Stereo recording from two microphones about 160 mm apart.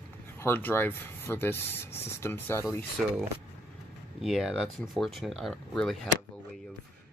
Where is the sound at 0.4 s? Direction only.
10° left (ahead or behind).